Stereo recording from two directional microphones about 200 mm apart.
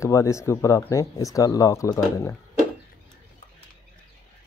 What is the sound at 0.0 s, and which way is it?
Speech, 15° left (ahead or behind).